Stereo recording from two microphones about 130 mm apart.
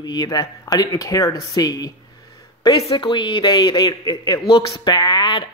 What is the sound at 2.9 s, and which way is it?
Speech, 40° left (ahead or behind).